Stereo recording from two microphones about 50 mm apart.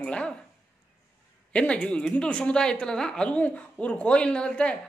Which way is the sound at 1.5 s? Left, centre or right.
Left.